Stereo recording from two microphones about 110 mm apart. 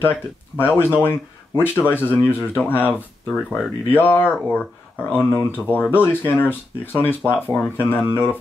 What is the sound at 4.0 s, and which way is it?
Speech, 20° left (ahead or behind).